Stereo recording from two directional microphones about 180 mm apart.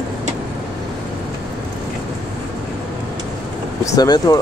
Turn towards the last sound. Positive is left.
turn(degrees=20)  # may be behind; listen again after turning